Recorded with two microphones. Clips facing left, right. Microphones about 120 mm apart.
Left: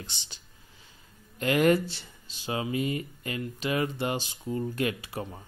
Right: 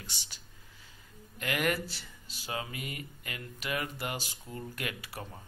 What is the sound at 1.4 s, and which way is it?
Speech, 25° left (ahead or behind).